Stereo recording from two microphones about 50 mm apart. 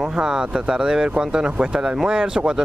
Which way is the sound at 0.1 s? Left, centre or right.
Centre.